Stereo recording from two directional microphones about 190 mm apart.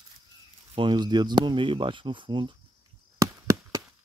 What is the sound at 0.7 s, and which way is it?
Speech, 25° right (ahead or behind).